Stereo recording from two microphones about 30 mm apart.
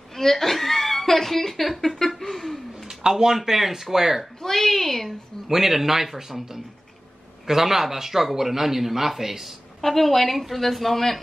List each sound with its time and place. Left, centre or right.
0.1 s speech: centre
2.9 s speech: right
4.4 s a woman's voice: centre
5.5 s speech: centre
9.8 s a woman's voice: centre